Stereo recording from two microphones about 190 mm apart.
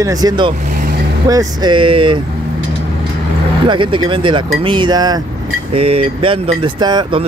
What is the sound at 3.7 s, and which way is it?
Speech, 25° right (ahead or behind).